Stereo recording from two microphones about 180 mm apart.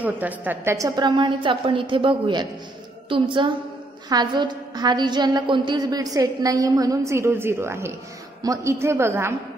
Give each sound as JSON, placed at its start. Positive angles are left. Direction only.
{"t": 0.0, "sound": "a woman's voice", "side_deg": -10}